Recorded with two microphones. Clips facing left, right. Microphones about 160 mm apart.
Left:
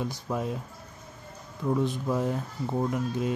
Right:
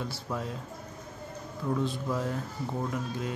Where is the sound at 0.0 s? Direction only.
20° left (ahead or behind).